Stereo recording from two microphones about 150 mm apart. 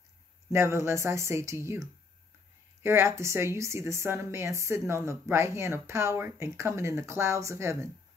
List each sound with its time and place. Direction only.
0.5 s speech: 15° right (ahead or behind)
2.8 s a woman's voice: 15° right (ahead or behind)